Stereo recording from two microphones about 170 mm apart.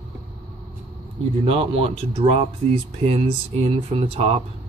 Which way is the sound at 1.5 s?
35° right (ahead or behind).